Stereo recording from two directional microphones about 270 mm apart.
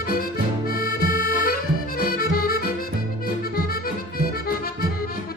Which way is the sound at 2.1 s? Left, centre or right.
Left.